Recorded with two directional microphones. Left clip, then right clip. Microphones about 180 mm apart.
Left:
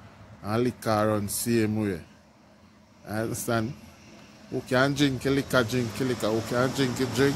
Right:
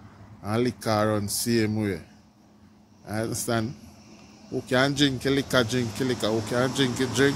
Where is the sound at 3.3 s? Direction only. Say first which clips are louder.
Even; centre (ahead or behind).